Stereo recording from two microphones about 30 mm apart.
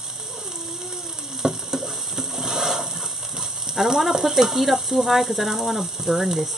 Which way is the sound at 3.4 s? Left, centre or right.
Centre.